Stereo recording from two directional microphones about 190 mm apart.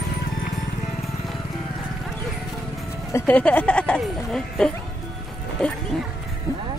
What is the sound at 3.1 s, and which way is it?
Speech, 10° left (ahead or behind).